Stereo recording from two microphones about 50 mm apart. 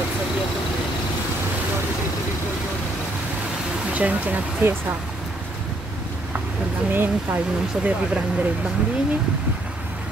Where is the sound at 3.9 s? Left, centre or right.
Right.